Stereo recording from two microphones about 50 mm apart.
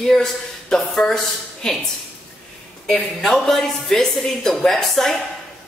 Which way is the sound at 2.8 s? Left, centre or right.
Centre.